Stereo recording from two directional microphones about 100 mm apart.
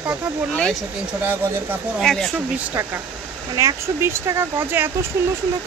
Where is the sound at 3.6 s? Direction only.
30° right (ahead or behind).